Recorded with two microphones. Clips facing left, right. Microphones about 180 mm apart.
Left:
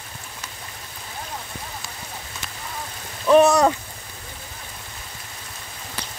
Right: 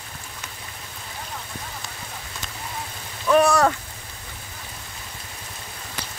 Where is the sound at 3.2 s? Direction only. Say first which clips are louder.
Left 3 dB; 25° left (ahead or behind).